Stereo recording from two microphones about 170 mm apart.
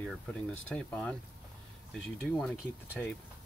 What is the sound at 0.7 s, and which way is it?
Speech, 5° left (ahead or behind).